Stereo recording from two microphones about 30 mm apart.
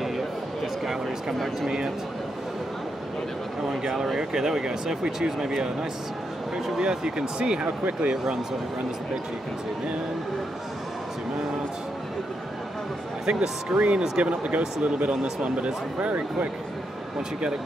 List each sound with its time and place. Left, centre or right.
3.6 s speech: centre
4.2 s speech: right
7.6 s speech: right
13.3 s speech: right
13.7 s speech: right